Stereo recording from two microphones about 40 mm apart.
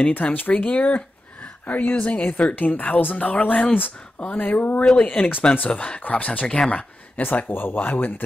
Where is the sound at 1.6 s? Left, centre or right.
Left.